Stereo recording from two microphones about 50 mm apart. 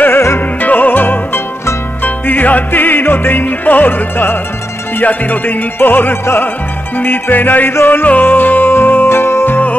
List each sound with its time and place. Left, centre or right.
0.0 s music: left
0.6 s music: left
7.7 s music: left